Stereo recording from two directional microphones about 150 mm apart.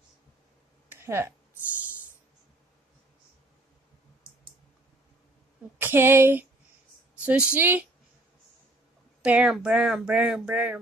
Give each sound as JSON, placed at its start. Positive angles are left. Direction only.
{"t": 0.8, "sound": "a sound", "side_deg": -15}
{"t": 5.8, "sound": "speech", "side_deg": -15}
{"t": 9.2, "sound": "speech", "side_deg": -5}